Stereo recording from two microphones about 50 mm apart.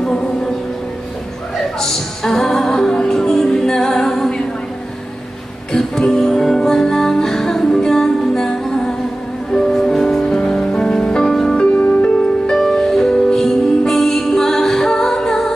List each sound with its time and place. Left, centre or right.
0.0 s music: centre
1.8 s music: centre
5.7 s music: centre
11.5 s music: left
12.4 s music: centre